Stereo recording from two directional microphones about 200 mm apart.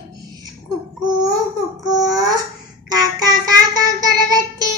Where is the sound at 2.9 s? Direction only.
20° right (ahead or behind).